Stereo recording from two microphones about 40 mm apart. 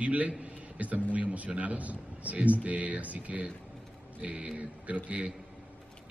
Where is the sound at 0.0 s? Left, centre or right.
Right.